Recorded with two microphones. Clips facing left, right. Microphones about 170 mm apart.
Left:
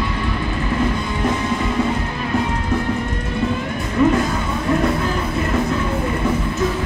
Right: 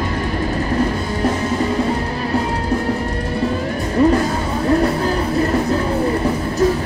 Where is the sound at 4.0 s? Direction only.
35° right (ahead or behind).